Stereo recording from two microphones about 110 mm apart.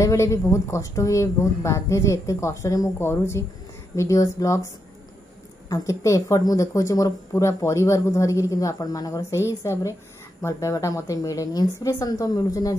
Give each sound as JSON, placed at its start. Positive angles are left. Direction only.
{"t": 0.0, "sound": "speech", "side_deg": 30}
{"t": 5.7, "sound": "a woman's voice", "side_deg": 30}